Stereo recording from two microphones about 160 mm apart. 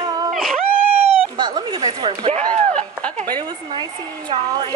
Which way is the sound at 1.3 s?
25° right (ahead or behind).